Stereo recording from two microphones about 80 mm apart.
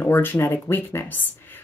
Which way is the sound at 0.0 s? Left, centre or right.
Left.